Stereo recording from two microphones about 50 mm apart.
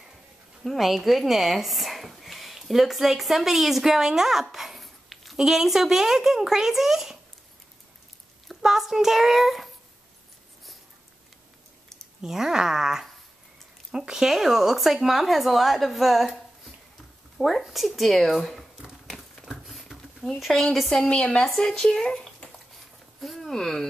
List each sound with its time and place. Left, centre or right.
0.7 s speech: centre
8.5 s speech: centre
12.2 s speech: centre
17.4 s speech: centre
19.6 s a sound: centre
21.0 s speech: left
21.5 s speech: centre